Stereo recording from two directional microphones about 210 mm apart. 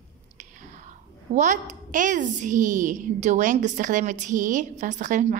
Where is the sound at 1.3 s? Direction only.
35° right (ahead or behind).